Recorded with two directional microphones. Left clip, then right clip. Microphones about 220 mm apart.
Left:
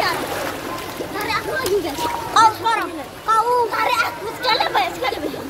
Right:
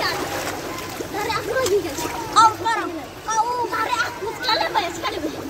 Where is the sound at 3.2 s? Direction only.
20° left (ahead or behind).